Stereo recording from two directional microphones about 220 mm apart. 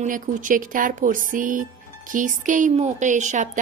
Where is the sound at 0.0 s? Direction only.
35° right (ahead or behind).